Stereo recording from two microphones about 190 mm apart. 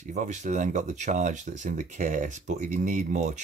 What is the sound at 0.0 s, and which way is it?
Speech, 40° right (ahead or behind).